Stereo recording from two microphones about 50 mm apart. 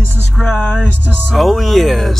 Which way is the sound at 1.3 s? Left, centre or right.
Centre.